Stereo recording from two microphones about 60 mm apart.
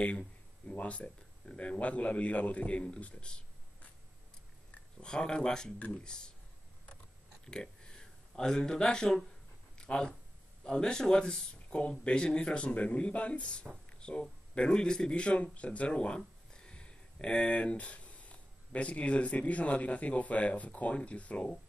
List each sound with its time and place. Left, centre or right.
0.0 s speech: centre
5.0 s speech: centre
7.4 s speech: centre